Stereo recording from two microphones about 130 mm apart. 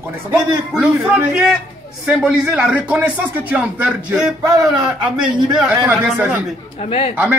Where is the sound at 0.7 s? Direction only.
10° right (ahead or behind).